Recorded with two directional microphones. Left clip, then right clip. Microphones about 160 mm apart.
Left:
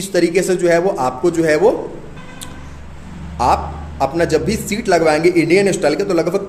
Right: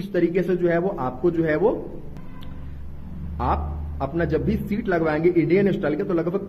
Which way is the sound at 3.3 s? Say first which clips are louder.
Left 10 dB; 15° left (ahead or behind).